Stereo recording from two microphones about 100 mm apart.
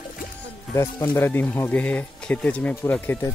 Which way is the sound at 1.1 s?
20° left (ahead or behind).